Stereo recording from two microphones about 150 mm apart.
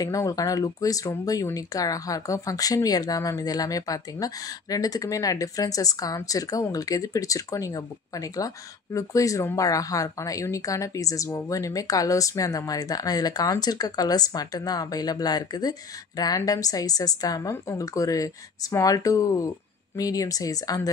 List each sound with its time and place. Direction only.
0.0 s speech: 25° left (ahead or behind)